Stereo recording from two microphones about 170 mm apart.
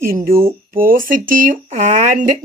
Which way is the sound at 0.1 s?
60° right (ahead or behind).